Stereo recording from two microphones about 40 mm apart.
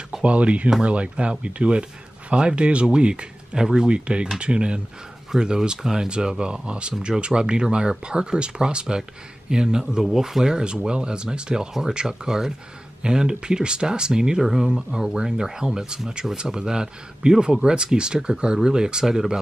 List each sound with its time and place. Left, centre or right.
0.2 s speech: right
14.4 s speech: centre